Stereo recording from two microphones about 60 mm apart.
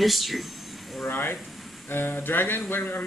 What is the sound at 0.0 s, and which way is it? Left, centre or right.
Speech, centre.